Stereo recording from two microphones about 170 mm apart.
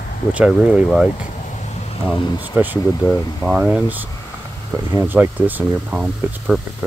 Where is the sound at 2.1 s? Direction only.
25° left (ahead or behind).